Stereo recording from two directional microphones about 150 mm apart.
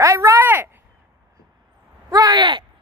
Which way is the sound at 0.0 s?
20° right (ahead or behind).